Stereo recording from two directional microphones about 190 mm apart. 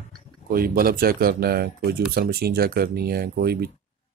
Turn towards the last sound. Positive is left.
turn(degrees=-55)  # may be behind; listen again after turning